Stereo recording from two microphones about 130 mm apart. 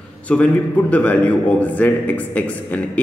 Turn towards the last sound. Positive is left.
turn(degrees=10)  # may be behind; listen again after turning